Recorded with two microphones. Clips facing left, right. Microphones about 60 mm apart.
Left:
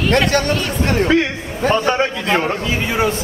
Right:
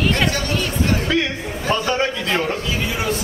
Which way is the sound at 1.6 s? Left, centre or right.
Left.